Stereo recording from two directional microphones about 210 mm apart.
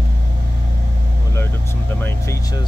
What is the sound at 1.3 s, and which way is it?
Vehicle, 10° left (ahead or behind).